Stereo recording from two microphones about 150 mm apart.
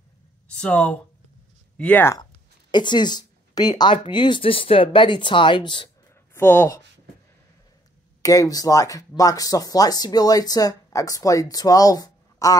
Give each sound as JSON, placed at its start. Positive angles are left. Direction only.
{"t": 0.6, "sound": "speech", "side_deg": 10}
{"t": 2.7, "sound": "speech", "side_deg": 30}
{"t": 6.3, "sound": "speech", "side_deg": 15}
{"t": 8.2, "sound": "speech", "side_deg": 25}